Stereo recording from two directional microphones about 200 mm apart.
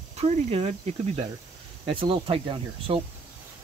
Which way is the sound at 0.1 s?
30° right (ahead or behind).